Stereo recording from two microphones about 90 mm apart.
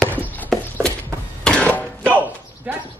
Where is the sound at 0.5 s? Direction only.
5° left (ahead or behind).